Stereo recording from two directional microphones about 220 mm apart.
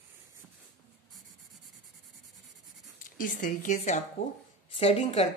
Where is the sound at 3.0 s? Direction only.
35° left (ahead or behind).